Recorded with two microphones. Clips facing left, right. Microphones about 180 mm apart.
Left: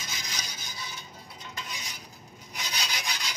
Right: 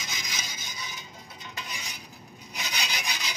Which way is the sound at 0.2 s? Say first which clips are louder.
Right 1 dB; 20° right (ahead or behind).